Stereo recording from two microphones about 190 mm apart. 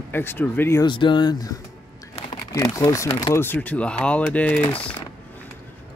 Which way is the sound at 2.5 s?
15° left (ahead or behind).